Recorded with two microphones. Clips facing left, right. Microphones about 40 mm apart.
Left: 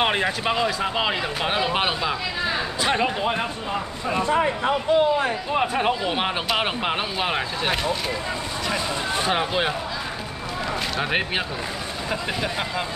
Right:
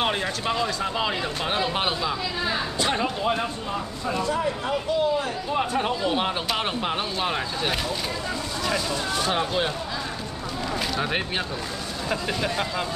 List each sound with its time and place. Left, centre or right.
0.0 s speech: left
5.5 s speech: left
7.7 s speech: centre
8.7 s speech: left
11.0 s speech: centre